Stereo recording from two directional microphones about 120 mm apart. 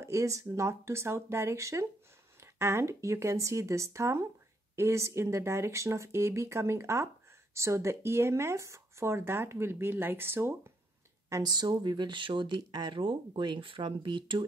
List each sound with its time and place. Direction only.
0.0 s speech: 25° right (ahead or behind)
11.2 s speech: 30° right (ahead or behind)